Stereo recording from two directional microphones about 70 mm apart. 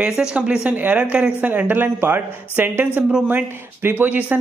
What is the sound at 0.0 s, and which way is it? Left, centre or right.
Speech, centre.